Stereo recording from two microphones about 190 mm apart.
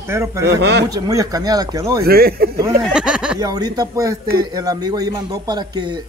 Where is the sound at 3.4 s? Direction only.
20° right (ahead or behind).